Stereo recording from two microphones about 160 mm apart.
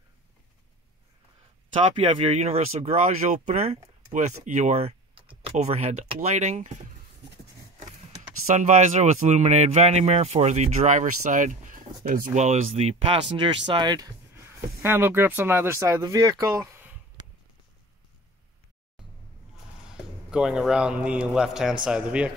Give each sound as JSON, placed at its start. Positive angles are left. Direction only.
{"t": 2.0, "sound": "speech", "side_deg": -35}
{"t": 8.5, "sound": "speech", "side_deg": -50}
{"t": 20.2, "sound": "a man's voice", "side_deg": -5}